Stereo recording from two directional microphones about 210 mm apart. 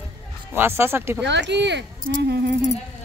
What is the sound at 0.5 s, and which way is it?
Speech, 10° right (ahead or behind).